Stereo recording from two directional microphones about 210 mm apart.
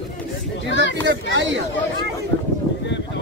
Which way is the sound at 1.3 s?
60° right (ahead or behind).